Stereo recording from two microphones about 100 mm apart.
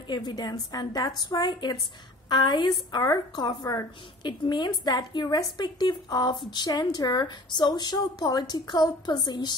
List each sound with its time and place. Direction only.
0.1 s a woman's voice: 45° left (ahead or behind)
2.9 s speech: 35° left (ahead or behind)
4.2 s a woman's voice: 45° left (ahead or behind)